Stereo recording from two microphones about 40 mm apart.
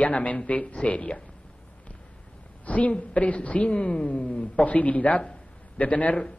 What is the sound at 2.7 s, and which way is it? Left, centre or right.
A man's voice, left.